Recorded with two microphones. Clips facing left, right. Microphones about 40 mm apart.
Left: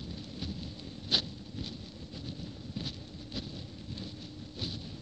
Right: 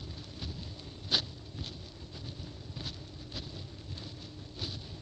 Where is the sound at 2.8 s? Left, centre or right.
Centre.